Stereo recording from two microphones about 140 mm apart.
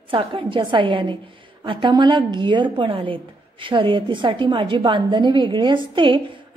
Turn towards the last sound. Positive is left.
turn(degrees=-35)  # may be behind; listen again after turning